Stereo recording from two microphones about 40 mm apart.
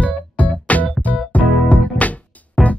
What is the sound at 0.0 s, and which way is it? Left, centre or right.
Music, left.